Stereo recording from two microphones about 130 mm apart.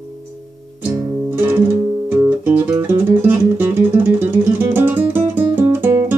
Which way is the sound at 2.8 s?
15° right (ahead or behind).